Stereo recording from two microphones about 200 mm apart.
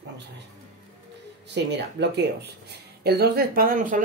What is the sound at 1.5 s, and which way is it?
Speech, 60° right (ahead or behind).